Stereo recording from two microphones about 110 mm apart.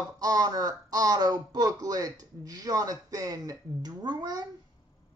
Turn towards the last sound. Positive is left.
turn(degrees=-35)  # may be behind; listen again after turning